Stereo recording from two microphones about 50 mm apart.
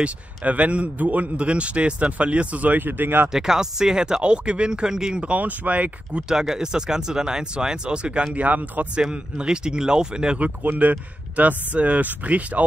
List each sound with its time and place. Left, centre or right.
0.0 s speech: right
3.3 s speech: centre
5.2 s speech: right
6.2 s speech: centre; by 8.8 s right
8.9 s speech: right
10.4 s speech: right